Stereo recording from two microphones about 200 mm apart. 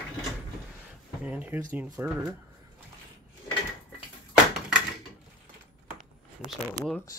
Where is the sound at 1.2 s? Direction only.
10° right (ahead or behind).